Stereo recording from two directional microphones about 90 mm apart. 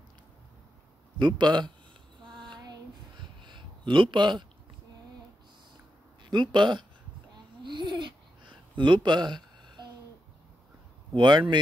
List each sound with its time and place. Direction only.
1.1 s a man's voice: 55° right (ahead or behind)
2.4 s a sound: 55° right (ahead or behind)
6.2 s speech: 60° right (ahead or behind)
7.6 s babbling: 60° right (ahead or behind)
11.1 s a man's voice: 60° right (ahead or behind)